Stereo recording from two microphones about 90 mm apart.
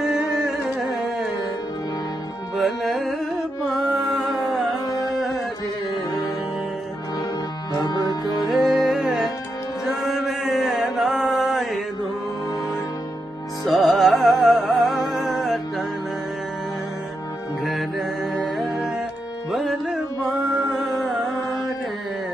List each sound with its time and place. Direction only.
0.1 s music: 5° right (ahead or behind)
2.5 s carnatic music: centre (ahead or behind)
3.7 s music: 5° right (ahead or behind)
7.8 s music: 50° left (ahead or behind)
8.4 s music: centre (ahead or behind)
9.8 s mantra: 5° right (ahead or behind)
13.7 s music: centre (ahead or behind)
17.6 s music: centre (ahead or behind)